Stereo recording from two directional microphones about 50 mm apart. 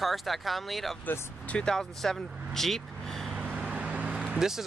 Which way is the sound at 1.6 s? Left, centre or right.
Centre.